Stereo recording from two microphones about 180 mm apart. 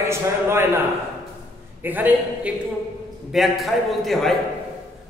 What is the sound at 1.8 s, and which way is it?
A man's voice, 10° right (ahead or behind).